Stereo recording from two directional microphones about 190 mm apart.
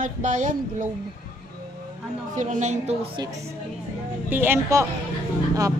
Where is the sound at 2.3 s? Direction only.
40° right (ahead or behind).